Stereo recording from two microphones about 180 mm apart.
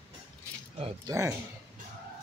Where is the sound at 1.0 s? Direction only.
15° right (ahead or behind).